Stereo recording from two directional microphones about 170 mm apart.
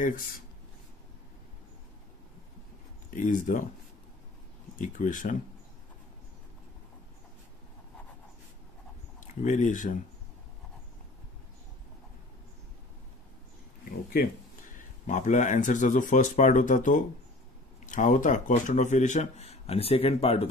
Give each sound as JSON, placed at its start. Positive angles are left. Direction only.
{"t": 3.1, "sound": "speech", "side_deg": 50}
{"t": 4.7, "sound": "speech", "side_deg": 50}
{"t": 9.3, "sound": "speech", "side_deg": 45}
{"t": 14.8, "sound": "speech", "side_deg": 45}